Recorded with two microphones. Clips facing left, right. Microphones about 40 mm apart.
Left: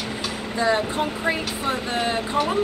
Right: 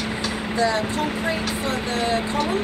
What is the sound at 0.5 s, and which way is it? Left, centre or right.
Speech, centre.